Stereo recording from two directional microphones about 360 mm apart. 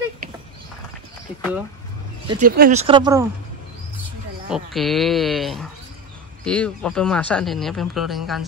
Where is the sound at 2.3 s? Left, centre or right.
Right.